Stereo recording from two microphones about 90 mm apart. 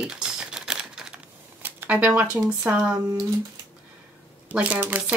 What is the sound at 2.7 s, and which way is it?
Speech, 20° right (ahead or behind).